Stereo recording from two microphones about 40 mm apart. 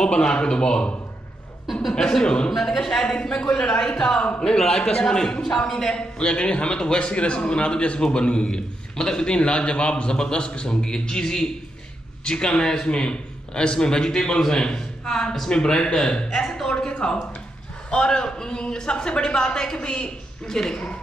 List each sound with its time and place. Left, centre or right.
0.0 s a man's voice: left
1.7 s speech: centre
2.0 s a man's voice: centre
3.9 s a man's voice: centre
12.4 s a man's voice: centre
16.3 s a man's voice: centre